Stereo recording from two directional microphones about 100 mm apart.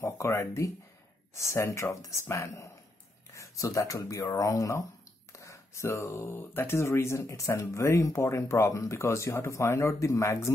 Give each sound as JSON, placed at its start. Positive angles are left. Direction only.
{"t": 0.0, "sound": "speech", "side_deg": 25}